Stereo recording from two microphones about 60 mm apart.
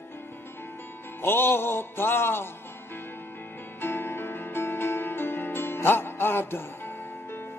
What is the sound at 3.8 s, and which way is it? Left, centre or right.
Music, left.